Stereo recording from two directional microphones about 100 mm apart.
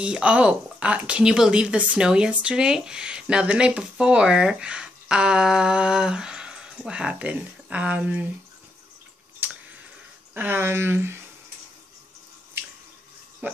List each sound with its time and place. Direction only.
0.0 s speech: 10° right (ahead or behind)
9.4 s drip: 20° right (ahead or behind)
10.3 s speech: 20° right (ahead or behind)
13.4 s speech: 20° right (ahead or behind)